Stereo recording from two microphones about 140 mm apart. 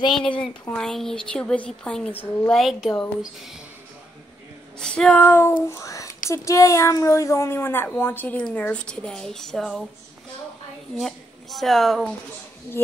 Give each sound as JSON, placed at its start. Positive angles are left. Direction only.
{"t": 0.4, "sound": "speech", "side_deg": 5}
{"t": 2.6, "sound": "speech", "side_deg": 0}
{"t": 4.7, "sound": "speech", "side_deg": 5}
{"t": 11.0, "sound": "speech", "side_deg": 0}